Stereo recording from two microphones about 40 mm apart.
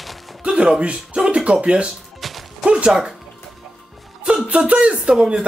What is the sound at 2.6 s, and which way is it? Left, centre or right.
Music, right.